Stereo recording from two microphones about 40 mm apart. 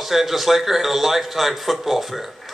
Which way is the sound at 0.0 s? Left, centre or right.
Centre.